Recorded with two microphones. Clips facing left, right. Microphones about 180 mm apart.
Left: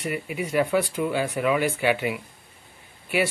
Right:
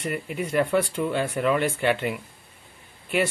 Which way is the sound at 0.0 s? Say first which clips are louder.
Even; 10° left (ahead or behind).